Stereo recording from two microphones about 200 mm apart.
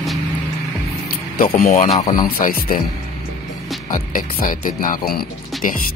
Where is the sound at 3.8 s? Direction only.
40° left (ahead or behind).